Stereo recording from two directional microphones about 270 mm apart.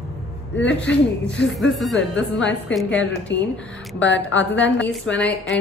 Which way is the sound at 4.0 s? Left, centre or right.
Left.